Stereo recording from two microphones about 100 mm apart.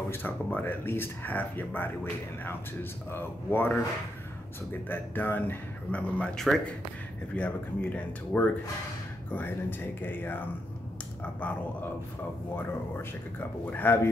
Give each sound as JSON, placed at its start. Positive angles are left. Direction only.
{"t": 0.1, "sound": "speech", "side_deg": 20}
{"t": 4.8, "sound": "speech", "side_deg": 20}
{"t": 6.3, "sound": "speech", "side_deg": 5}
{"t": 7.3, "sound": "speech", "side_deg": 15}